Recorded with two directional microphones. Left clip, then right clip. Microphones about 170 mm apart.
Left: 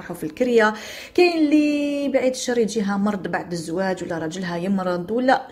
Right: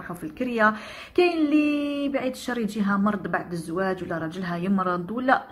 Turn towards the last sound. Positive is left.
turn(degrees=30)  # may be behind; listen again after turning